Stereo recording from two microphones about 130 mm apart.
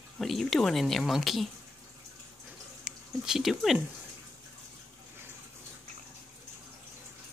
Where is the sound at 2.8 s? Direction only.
5° right (ahead or behind).